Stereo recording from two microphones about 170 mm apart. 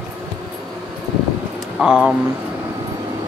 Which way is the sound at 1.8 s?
5° right (ahead or behind).